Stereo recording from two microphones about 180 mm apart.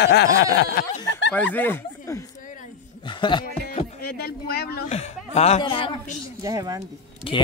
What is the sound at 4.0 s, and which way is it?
Speech, 60° left (ahead or behind).